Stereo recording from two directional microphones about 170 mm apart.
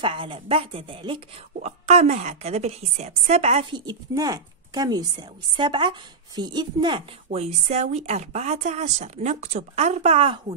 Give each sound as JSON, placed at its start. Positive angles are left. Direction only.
{"t": 0.0, "sound": "a woman's voice", "side_deg": -30}
{"t": 7.3, "sound": "speech", "side_deg": -40}